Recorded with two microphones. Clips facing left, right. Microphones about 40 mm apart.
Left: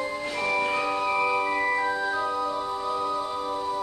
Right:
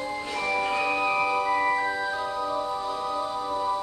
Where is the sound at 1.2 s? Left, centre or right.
Centre.